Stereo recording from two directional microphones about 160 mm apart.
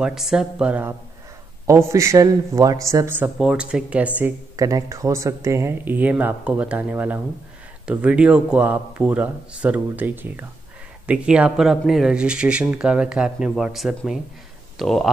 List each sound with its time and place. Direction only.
0.0 s speech: 5° right (ahead or behind)
4.6 s speech: 20° right (ahead or behind); by 15.0 s centre (ahead or behind)